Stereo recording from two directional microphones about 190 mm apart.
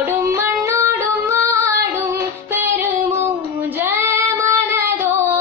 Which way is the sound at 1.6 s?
15° right (ahead or behind).